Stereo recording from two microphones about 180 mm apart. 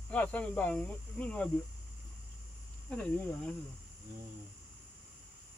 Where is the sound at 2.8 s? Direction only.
5° left (ahead or behind).